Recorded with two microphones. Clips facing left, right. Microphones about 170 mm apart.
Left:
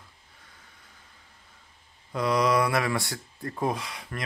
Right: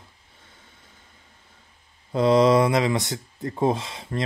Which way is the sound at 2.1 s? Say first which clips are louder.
Right 7 dB; 25° right (ahead or behind).